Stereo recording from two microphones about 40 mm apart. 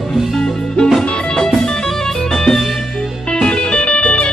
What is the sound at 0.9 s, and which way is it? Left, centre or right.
Music, centre.